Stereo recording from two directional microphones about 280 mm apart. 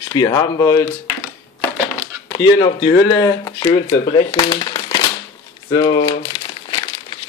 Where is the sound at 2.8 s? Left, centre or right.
Centre.